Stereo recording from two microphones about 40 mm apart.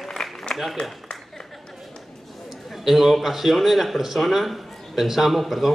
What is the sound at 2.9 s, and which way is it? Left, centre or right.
A man's voice, centre.